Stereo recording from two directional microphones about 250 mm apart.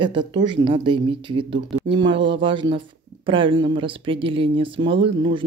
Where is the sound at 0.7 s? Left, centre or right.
Centre.